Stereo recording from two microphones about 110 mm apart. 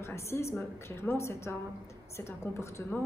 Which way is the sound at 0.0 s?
25° left (ahead or behind).